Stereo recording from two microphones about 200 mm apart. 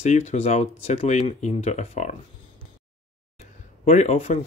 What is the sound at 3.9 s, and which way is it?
Speech, 35° left (ahead or behind).